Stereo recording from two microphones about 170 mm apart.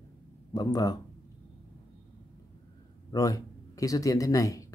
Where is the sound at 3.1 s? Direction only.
20° left (ahead or behind).